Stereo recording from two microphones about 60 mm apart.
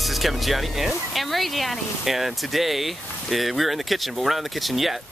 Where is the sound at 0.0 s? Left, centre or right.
Centre.